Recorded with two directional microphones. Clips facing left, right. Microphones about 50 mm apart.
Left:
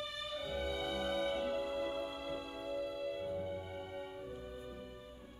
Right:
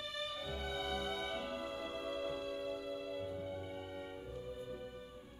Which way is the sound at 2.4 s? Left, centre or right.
Centre.